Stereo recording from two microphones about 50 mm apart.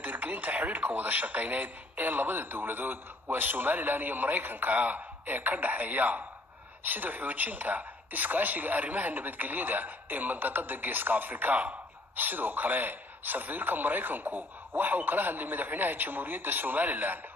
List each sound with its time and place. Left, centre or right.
0.0 s speech: right